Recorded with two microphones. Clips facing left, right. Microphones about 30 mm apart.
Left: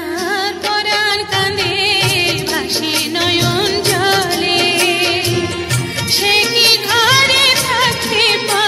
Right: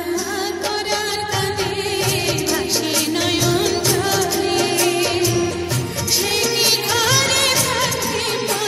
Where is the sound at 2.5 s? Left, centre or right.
Left.